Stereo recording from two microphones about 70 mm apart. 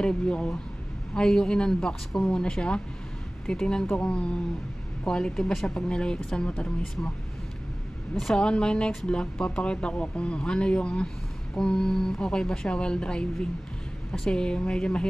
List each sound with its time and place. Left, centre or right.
0.0 s speech: centre
5.9 s speech: centre
8.2 s speech: centre